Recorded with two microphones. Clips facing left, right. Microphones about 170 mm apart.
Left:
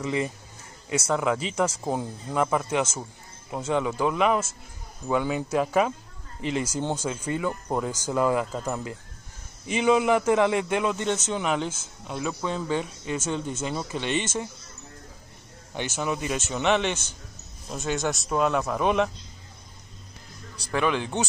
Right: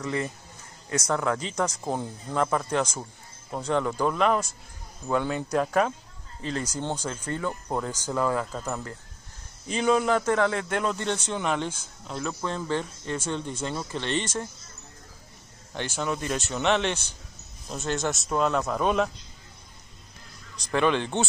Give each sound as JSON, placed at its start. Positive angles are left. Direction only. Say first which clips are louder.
{"t": 0.0, "sound": "a man's voice", "louder": "left 2 dB", "side_deg": 15}
{"t": 16.0, "sound": "a man's voice", "louder": "even", "side_deg": 5}
{"t": 20.5, "sound": "speech", "louder": "right 2 dB", "side_deg": 10}